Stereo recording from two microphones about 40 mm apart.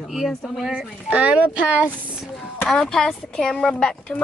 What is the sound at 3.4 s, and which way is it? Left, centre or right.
Speech, centre.